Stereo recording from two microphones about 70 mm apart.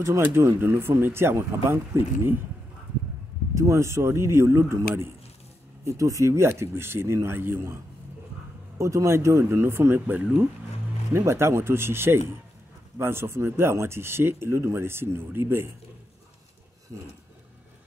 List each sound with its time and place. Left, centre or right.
0.0 s speech: right
3.5 s speech: right
8.7 s speech: right
11.1 s speech: right
16.9 s speech: right